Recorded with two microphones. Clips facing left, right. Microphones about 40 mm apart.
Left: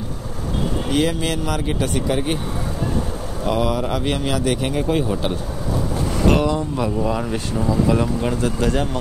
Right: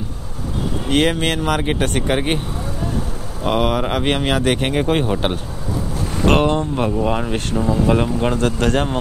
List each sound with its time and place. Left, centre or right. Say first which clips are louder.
0.8 s speech: right 4 dB; right
3.4 s speech: right 2 dB; right
6.2 s speech: right 3 dB; right
7.8 s speech: right 2 dB; right
8.4 s speech: right 2 dB; right